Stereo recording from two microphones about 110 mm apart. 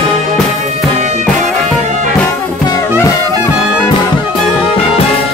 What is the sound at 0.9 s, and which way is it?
Music, 90° right.